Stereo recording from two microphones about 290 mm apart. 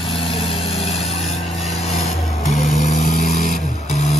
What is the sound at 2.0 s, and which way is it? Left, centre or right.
Vehicle, left.